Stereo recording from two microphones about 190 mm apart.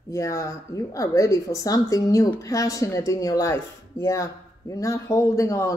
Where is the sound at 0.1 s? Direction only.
15° left (ahead or behind).